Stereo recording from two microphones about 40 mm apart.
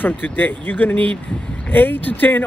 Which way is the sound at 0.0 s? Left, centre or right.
Left.